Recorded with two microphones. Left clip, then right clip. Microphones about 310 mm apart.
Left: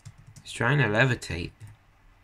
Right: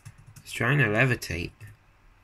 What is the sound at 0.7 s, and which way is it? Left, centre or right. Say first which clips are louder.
Speech: right 1 dB; centre.